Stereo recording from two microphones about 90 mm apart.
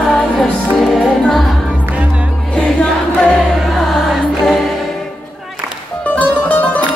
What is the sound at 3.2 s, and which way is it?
Music, centre (ahead or behind).